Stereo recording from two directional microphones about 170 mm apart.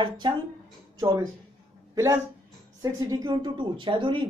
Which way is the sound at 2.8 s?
20° right (ahead or behind).